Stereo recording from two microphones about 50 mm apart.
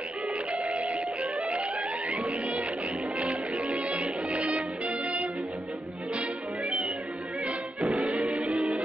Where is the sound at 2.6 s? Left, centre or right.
Right.